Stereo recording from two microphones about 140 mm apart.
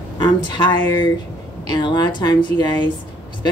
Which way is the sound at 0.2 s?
30° left (ahead or behind).